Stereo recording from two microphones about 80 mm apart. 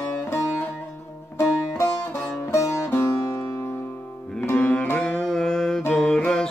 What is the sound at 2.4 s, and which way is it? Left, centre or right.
Music, left.